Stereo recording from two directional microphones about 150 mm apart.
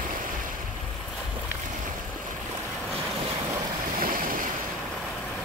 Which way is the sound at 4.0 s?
70° right (ahead or behind).